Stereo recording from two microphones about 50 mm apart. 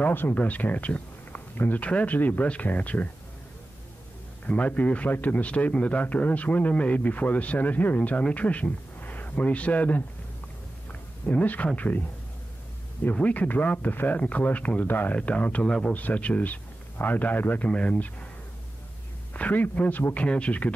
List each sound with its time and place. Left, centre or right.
0.0 s a man's voice: left
4.5 s a man's voice: left
13.1 s a man's voice: left
14.9 s a man's voice: left
15.1 s speech: left
15.6 s speech: centre
15.9 s a man's voice: left
17.6 s speech: left
19.3 s a man's voice: left
20.2 s speech: left